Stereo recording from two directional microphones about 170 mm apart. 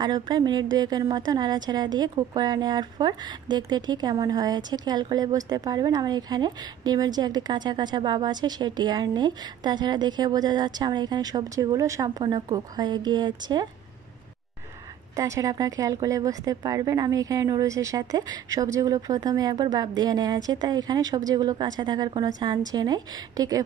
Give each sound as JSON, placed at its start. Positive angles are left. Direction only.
{"t": 0.0, "sound": "a woman's voice", "side_deg": -25}
{"t": 15.1, "sound": "a woman's voice", "side_deg": -20}